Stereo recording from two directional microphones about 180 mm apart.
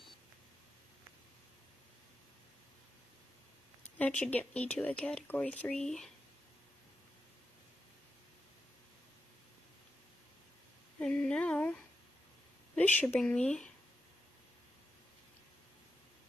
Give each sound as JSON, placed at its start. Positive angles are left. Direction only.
{"t": 4.0, "sound": "speech", "side_deg": 10}
{"t": 11.0, "sound": "a sound", "side_deg": 5}
{"t": 12.7, "sound": "speech", "side_deg": 5}